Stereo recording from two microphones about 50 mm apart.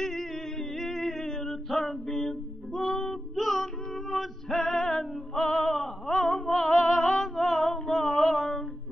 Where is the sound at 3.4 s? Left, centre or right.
Centre.